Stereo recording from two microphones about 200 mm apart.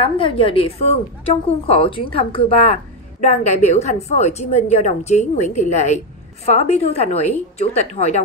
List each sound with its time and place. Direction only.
0.0 s a woman's voice: 25° left (ahead or behind)